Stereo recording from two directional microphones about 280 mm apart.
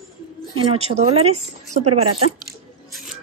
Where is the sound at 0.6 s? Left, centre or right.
Right.